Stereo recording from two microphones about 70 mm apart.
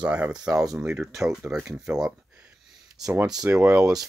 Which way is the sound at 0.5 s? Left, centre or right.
Right.